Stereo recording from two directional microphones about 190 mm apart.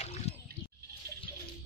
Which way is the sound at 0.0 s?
35° left (ahead or behind).